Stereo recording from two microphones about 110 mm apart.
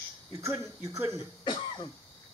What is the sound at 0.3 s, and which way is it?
Speech, 30° right (ahead or behind).